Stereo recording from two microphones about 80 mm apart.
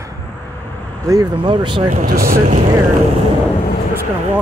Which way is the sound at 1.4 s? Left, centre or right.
Right.